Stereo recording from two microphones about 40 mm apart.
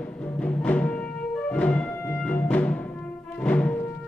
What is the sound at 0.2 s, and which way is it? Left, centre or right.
Music, left.